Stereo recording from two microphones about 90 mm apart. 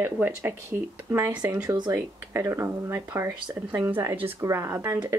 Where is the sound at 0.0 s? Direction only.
25° right (ahead or behind).